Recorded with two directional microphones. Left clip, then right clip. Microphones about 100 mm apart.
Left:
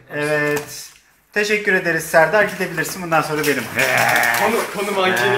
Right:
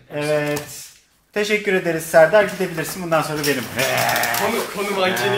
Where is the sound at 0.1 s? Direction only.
90° right; by 3.4 s 65° right (ahead or behind).